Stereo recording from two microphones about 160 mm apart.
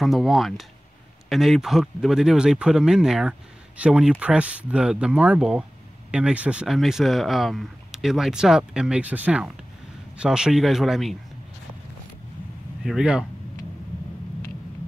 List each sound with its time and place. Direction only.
0.0 s speech: centre (ahead or behind)
12.8 s speech: 5° right (ahead or behind)